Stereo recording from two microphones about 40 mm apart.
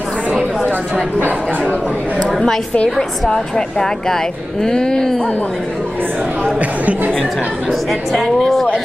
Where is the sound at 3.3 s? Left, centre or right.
Centre.